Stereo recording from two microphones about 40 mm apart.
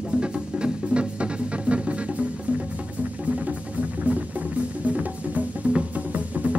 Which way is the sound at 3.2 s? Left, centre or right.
Right.